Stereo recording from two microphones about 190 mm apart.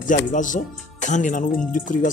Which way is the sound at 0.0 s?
40° left (ahead or behind).